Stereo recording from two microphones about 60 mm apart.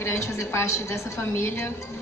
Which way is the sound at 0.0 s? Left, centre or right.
Left.